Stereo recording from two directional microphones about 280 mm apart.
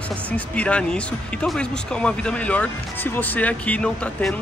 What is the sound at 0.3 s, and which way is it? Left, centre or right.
Speech, centre.